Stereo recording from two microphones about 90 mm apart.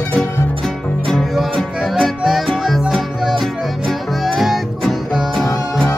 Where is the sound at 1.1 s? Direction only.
Centre (ahead or behind).